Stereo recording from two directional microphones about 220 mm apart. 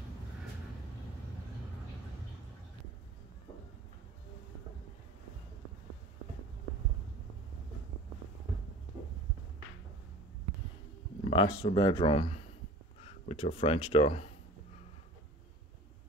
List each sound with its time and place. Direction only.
11.2 s speech: 25° left (ahead or behind)